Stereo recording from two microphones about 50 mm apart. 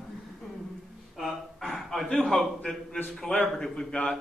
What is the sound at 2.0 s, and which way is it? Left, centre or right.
A man's voice, centre.